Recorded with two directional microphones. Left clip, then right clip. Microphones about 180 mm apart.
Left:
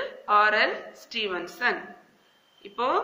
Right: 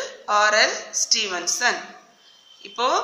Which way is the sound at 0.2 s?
45° right (ahead or behind).